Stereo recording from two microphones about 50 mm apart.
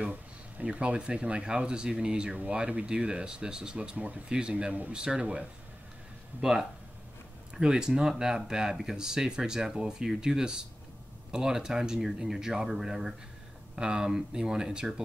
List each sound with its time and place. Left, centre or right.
0.7 s speech: right
3.9 s speech: right
4.3 s speech: centre
7.5 s speech: centre